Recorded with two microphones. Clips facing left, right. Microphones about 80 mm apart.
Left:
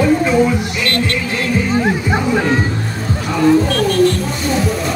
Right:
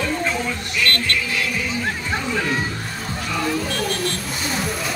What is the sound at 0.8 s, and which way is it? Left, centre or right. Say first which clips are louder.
Music: left 5 dB; left.